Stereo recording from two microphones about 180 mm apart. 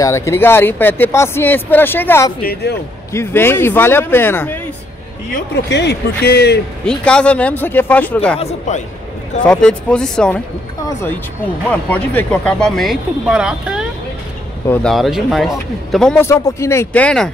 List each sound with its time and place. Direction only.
0.0 s speech: 15° left (ahead or behind)
2.4 s speech: 60° left (ahead or behind)
3.1 s speech: 15° left (ahead or behind)
5.7 s speech: 70° left (ahead or behind)
6.9 s speech: 5° left (ahead or behind)
8.4 s speech: 40° left (ahead or behind)
9.4 s speech: 5° left (ahead or behind)
11.7 s speech: 10° left (ahead or behind)
16.3 s speech: 15° left (ahead or behind)